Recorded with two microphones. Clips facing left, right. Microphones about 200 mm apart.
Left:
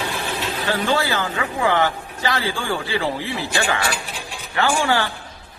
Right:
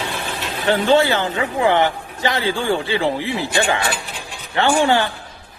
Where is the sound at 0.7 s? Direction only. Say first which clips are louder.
Right 7 dB; 25° right (ahead or behind).